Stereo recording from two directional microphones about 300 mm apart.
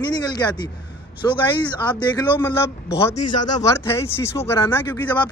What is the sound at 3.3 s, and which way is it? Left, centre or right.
Speech, left.